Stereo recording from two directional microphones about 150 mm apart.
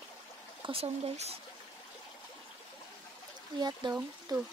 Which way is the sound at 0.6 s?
40° right (ahead or behind).